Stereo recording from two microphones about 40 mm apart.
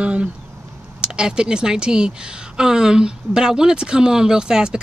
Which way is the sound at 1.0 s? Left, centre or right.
Centre.